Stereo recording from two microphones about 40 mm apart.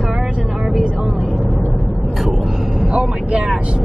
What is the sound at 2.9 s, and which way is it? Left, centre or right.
Speech, right.